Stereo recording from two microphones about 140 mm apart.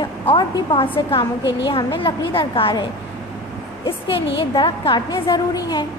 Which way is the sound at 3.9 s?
40° left (ahead or behind).